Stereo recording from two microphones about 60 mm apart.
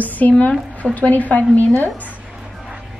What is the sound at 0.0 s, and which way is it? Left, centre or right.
Speech, left.